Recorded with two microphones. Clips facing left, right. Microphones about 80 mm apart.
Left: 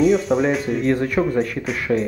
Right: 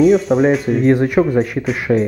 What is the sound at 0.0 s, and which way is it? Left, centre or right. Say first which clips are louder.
Speech: right 5 dB; centre.